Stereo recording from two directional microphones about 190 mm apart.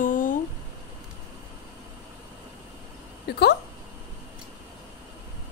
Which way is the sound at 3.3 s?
60° left (ahead or behind).